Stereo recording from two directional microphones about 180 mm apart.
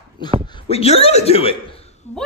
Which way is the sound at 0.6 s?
35° left (ahead or behind).